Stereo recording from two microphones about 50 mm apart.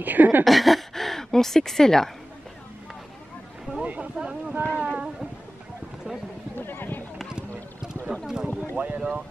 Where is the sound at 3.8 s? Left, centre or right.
Right.